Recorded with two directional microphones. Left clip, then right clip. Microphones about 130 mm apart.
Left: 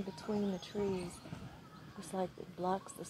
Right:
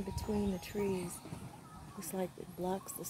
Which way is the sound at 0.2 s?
30° right (ahead or behind).